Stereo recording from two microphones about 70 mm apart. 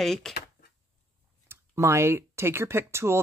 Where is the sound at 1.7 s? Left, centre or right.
Right.